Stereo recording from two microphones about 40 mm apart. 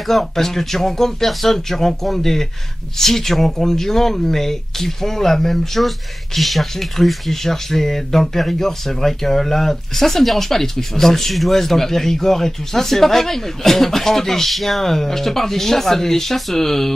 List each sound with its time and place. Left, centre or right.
0.0 s speech: centre